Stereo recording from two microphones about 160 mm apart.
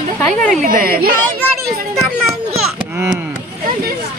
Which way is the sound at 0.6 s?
65° right (ahead or behind).